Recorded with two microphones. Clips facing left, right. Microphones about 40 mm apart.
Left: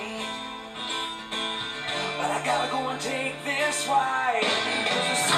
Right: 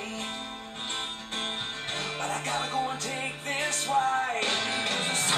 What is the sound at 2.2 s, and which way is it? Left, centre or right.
Music, centre.